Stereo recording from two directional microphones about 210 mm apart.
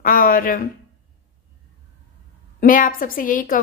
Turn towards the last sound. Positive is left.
turn(degrees=40)  # may be behind; listen again after turning